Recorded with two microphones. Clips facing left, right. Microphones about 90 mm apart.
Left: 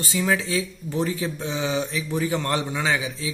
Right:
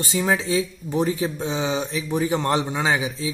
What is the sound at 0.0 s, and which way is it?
Speech, 25° right (ahead or behind).